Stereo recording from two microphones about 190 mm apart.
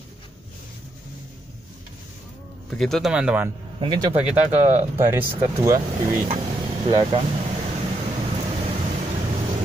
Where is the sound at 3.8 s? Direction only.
30° right (ahead or behind).